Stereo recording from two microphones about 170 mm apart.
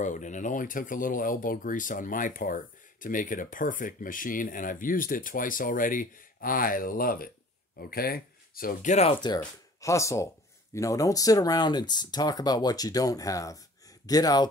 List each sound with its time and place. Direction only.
0.0 s speech: 45° left (ahead or behind)
8.9 s speech: 40° left (ahead or behind)
9.8 s speech: 20° left (ahead or behind)